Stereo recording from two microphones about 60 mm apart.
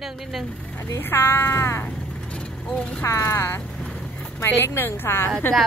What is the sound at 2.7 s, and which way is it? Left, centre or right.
Speech, centre.